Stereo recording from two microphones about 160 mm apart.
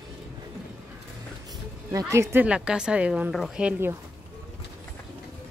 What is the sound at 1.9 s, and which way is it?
Speech, 20° right (ahead or behind).